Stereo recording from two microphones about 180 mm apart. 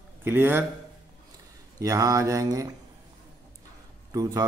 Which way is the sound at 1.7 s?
20° right (ahead or behind).